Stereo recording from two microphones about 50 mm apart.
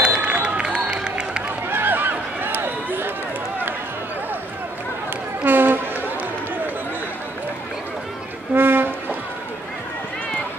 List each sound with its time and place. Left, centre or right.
0.0 s run: right
1.7 s run: right
5.4 s a sound: right
8.5 s music: right